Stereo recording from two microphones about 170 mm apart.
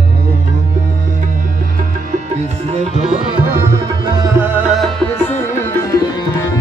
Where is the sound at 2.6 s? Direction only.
40° right (ahead or behind).